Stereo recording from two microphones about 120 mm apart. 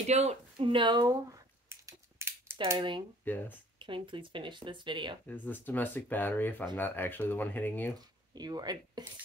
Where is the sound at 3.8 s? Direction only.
45° right (ahead or behind).